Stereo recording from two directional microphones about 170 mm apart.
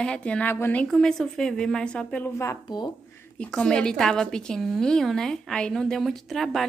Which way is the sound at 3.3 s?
5° left (ahead or behind).